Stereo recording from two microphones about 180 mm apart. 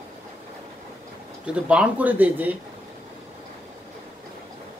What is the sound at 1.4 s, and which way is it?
Speech, 5° right (ahead or behind).